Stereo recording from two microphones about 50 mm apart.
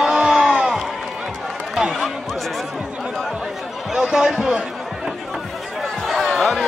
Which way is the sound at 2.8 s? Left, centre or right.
Centre.